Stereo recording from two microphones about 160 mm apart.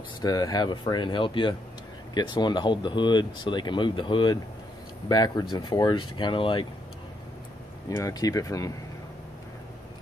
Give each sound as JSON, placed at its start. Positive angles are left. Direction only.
{"t": 0.2, "sound": "speech", "side_deg": 25}
{"t": 7.9, "sound": "speech", "side_deg": 20}